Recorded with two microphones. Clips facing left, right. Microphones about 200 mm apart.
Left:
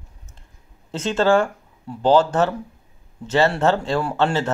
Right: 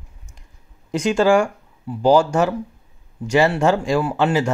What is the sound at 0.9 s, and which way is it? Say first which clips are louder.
Speech: right 2 dB; 15° right (ahead or behind).